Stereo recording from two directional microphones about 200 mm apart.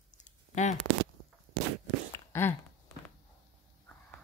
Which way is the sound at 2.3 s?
15° left (ahead or behind).